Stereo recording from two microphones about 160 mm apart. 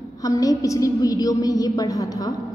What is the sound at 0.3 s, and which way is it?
A woman's voice, 20° left (ahead or behind).